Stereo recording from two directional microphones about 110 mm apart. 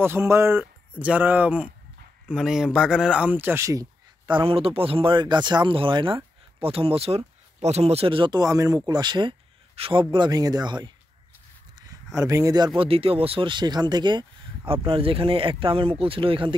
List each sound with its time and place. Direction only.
0.0 s speech: 20° right (ahead or behind)
3.3 s speech: 20° right (ahead or behind)
4.3 s speech: 55° right (ahead or behind)
8.4 s speech: 30° right (ahead or behind)
12.2 s speech: 30° right (ahead or behind)
12.8 s speech: 60° right (ahead or behind)